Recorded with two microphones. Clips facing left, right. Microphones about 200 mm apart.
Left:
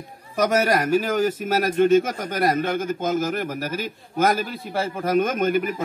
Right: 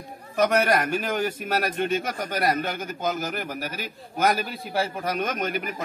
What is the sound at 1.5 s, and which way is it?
Speech, 45° left (ahead or behind).